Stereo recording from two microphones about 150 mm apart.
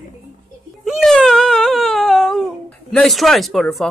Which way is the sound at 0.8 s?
Centre (ahead or behind).